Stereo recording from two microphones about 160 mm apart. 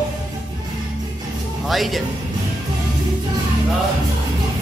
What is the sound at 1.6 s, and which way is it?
Speech, centre (ahead or behind).